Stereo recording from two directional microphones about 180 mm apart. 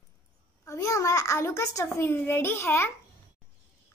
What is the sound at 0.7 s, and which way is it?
A child's voice, 15° left (ahead or behind).